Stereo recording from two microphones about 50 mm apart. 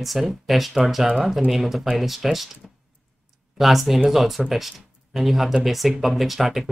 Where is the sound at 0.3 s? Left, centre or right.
Centre.